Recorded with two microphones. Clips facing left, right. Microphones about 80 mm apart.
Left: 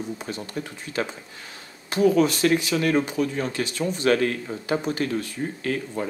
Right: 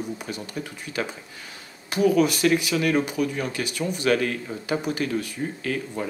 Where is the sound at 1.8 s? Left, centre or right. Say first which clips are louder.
Left 1 dB; centre.